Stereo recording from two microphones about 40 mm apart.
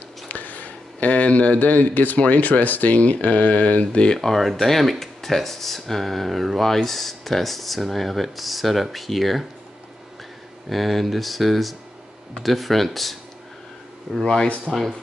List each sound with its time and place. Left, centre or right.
0.3 s a sound: left
2.1 s speech: left
4.2 s speech: centre
10.7 s speech: centre
14.2 s speech: centre
14.6 s speech: centre